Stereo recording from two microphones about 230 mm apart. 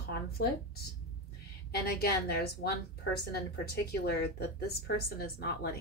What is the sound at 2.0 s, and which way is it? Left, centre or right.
A woman's voice, left.